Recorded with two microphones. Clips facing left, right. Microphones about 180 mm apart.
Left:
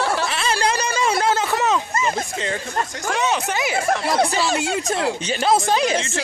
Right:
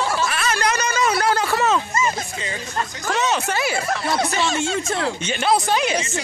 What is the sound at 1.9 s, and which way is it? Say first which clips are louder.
Speech: even; 55° left (ahead or behind).